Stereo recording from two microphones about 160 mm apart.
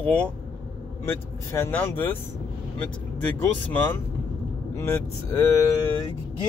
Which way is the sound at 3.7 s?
10° left (ahead or behind).